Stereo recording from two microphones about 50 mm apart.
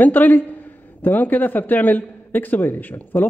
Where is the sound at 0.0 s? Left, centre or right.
Left.